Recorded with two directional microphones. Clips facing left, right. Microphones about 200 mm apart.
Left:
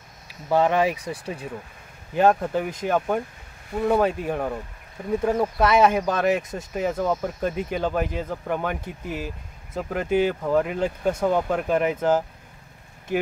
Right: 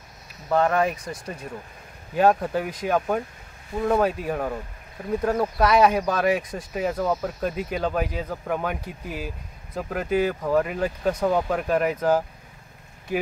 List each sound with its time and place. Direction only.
0.5 s speech: 5° left (ahead or behind)
2.1 s speech: 5° right (ahead or behind)